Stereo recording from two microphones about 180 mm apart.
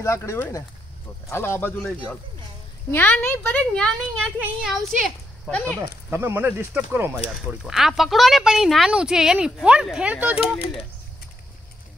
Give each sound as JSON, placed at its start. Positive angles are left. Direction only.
{"t": 0.0, "sound": "a child's voice", "side_deg": 15}
{"t": 5.5, "sound": "a child's voice", "side_deg": 5}
{"t": 6.0, "sound": "speech", "side_deg": -10}
{"t": 7.6, "sound": "a woman's voice", "side_deg": 0}